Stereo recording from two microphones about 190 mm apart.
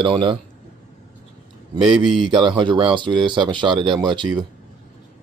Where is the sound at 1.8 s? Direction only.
25° right (ahead or behind).